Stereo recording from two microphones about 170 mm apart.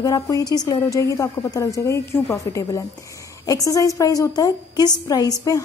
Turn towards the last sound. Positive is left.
turn(degrees=20)  # may be behind; listen again after turning